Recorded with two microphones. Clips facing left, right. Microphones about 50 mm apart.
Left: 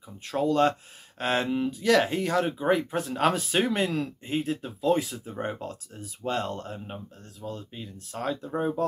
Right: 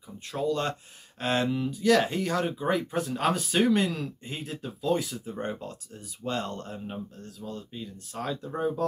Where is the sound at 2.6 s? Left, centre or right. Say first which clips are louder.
Left 3 dB; centre.